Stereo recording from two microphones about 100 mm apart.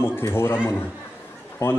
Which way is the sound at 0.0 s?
25° left (ahead or behind).